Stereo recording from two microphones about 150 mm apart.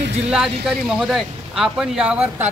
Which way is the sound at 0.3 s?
Centre (ahead or behind).